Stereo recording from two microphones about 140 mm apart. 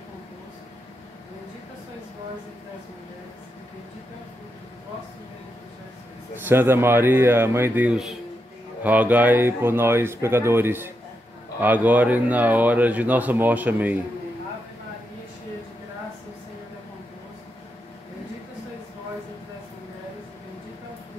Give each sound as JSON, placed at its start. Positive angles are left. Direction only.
{"t": 6.4, "sound": "speech", "side_deg": -15}